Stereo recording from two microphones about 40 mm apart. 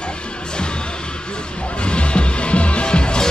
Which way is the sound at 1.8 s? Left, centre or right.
Left.